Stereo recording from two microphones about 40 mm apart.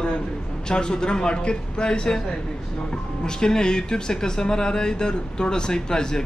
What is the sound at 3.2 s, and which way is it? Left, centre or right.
A man's voice, centre.